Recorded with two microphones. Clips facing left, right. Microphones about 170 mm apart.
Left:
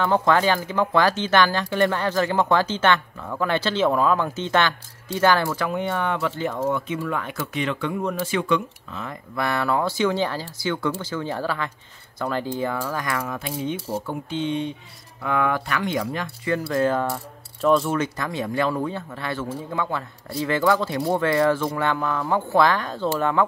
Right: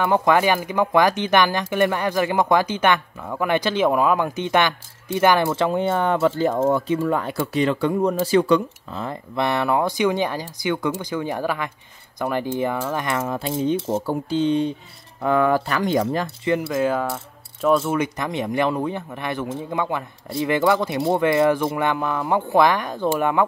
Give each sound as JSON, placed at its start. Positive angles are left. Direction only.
{"t": 0.0, "sound": "speech", "side_deg": -15}
{"t": 14.0, "sound": "speech", "side_deg": -35}
{"t": 16.6, "sound": "speech", "side_deg": -10}
{"t": 17.9, "sound": "speech", "side_deg": -15}